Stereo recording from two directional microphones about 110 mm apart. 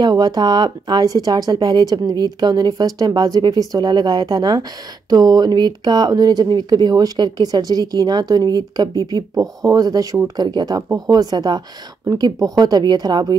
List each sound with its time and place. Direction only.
0.0 s speech: 40° right (ahead or behind)